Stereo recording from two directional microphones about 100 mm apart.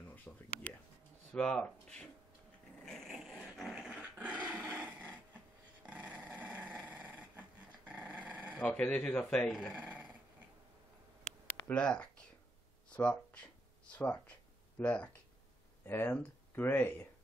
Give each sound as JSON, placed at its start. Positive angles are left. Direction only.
{"t": 0.1, "sound": "a sound", "side_deg": 15}
{"t": 1.3, "sound": "speech", "side_deg": 10}
{"t": 2.8, "sound": "dog", "side_deg": 5}
{"t": 8.5, "sound": "speech", "side_deg": 15}
{"t": 9.5, "sound": "speech", "side_deg": -10}
{"t": 11.6, "sound": "a sound", "side_deg": 10}
{"t": 12.9, "sound": "speech", "side_deg": 10}